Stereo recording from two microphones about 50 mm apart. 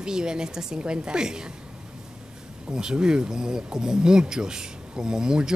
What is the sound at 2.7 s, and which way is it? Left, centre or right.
Speech, centre.